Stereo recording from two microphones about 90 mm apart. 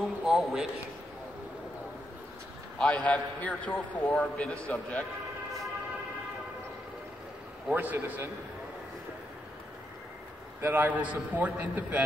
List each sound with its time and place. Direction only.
0.2 s speech: 5° right (ahead or behind)
2.8 s a man's voice: 15° left (ahead or behind)
7.7 s a man's voice: 20° right (ahead or behind)
10.6 s a man's voice: 20° right (ahead or behind)